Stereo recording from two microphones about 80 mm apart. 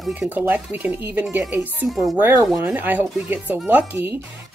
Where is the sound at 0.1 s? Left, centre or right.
Right.